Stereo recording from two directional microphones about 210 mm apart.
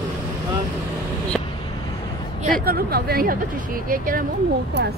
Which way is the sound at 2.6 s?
45° right (ahead or behind).